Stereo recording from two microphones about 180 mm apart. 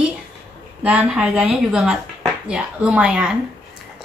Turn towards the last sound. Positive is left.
turn(degrees=-5)  # may be behind; listen again after turning